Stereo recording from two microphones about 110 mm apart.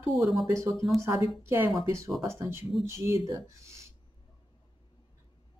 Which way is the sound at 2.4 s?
25° right (ahead or behind).